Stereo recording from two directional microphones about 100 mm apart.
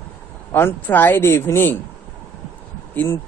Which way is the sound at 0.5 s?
20° left (ahead or behind).